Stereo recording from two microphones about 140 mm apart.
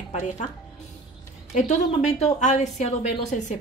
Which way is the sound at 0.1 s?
55° left (ahead or behind).